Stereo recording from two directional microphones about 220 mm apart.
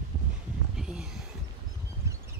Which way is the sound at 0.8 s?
5° right (ahead or behind).